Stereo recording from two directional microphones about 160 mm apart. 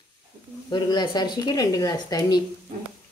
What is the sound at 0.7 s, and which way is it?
Speech, 25° left (ahead or behind).